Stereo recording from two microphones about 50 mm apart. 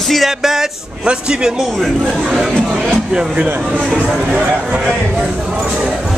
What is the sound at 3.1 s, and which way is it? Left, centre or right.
A man's voice, right.